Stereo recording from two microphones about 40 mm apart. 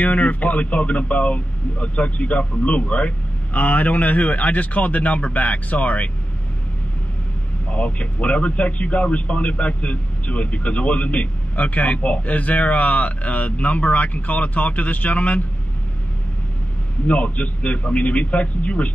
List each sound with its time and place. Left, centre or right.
0.0 s speech: left
7.7 s speech: left
17.1 s speech: left